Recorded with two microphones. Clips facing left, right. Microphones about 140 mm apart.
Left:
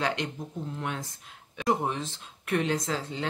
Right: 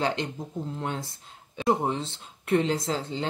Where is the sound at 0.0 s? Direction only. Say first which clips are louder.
Right 2 dB; 30° right (ahead or behind).